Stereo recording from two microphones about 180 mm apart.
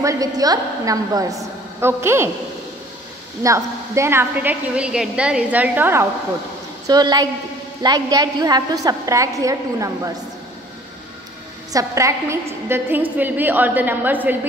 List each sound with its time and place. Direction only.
0.0 s a woman's voice: 20° right (ahead or behind)
3.4 s a woman's voice: 15° right (ahead or behind)
6.9 s a woman's voice: 20° right (ahead or behind)
11.7 s a woman's voice: 15° right (ahead or behind)